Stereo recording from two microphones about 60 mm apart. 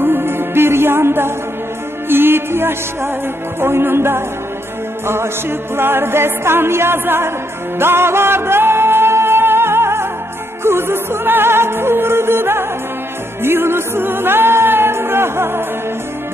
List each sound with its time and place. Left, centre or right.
0.0 s music: right